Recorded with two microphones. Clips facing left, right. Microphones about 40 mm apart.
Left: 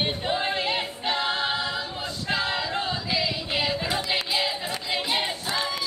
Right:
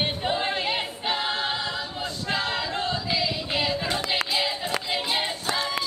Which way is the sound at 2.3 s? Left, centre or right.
Centre.